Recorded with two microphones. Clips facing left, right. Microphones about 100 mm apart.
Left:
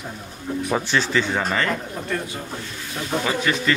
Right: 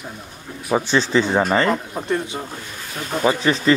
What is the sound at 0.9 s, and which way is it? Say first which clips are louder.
Speech: right 6 dB; 25° right (ahead or behind).